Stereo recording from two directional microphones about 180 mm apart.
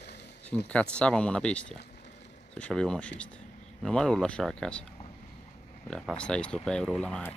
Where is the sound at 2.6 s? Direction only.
5° left (ahead or behind).